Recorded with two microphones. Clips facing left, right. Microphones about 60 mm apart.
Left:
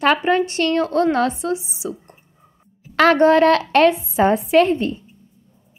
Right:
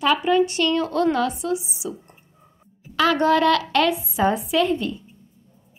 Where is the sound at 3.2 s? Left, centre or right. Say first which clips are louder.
Left 5 dB; left.